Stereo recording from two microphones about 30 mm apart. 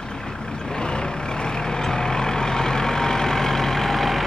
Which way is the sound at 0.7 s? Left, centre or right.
Left.